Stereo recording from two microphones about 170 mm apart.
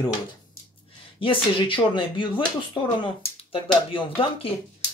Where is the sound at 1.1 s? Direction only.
30° left (ahead or behind).